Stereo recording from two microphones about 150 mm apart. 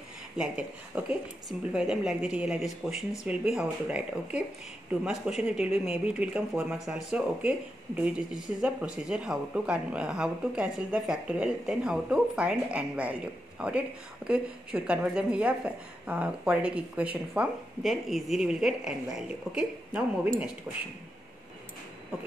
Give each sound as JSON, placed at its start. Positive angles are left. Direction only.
{"t": 0.4, "sound": "speech", "side_deg": -10}
{"t": 20.7, "sound": "speech", "side_deg": -15}